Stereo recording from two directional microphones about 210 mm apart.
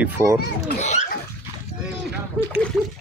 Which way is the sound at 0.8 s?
35° left (ahead or behind).